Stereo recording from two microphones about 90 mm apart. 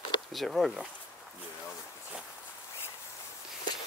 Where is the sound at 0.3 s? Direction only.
Centre (ahead or behind).